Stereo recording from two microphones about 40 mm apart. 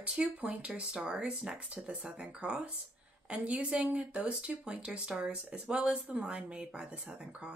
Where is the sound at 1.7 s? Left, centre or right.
Right.